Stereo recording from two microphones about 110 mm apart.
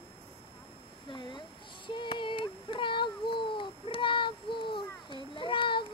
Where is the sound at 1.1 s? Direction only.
45° left (ahead or behind).